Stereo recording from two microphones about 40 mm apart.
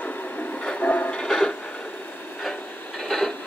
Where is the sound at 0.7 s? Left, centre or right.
Left.